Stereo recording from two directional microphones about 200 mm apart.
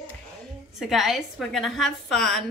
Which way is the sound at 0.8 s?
Centre (ahead or behind).